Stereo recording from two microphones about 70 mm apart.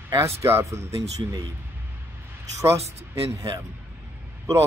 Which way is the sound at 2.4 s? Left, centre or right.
Right.